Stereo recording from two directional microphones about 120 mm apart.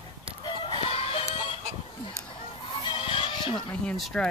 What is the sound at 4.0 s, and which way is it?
Speech, 10° left (ahead or behind).